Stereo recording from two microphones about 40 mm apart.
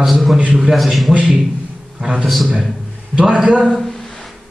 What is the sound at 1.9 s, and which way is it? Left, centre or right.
Speech, right.